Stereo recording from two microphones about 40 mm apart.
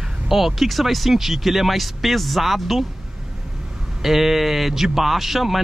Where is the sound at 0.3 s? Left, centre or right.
Centre.